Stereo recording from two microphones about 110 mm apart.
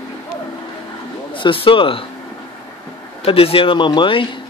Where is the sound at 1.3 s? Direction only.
50° left (ahead or behind).